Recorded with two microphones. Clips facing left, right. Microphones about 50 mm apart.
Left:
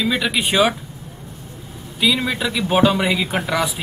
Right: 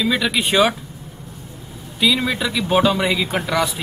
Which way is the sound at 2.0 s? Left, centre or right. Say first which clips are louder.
Right 1 dB; centre.